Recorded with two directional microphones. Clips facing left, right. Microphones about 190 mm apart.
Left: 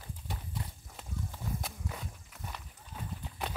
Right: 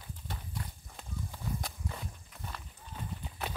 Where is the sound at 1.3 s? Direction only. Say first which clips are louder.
Right 2 dB; centre (ahead or behind).